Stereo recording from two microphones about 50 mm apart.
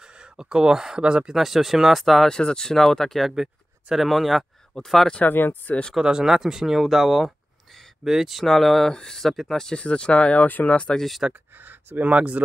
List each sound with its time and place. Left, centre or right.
0.0 s speech: centre
1.3 s speech: centre
2.3 s speech: centre
4.7 s speech: centre
5.2 s speech: left
5.9 s speech: centre
8.5 s speech: centre
9.7 s speech: centre; by 10.8 s left
11.0 s speech: centre
11.5 s speech: right
12.0 s speech: right